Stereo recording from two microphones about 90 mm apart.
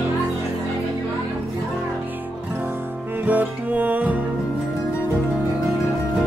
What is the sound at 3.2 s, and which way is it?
Music, 20° right (ahead or behind).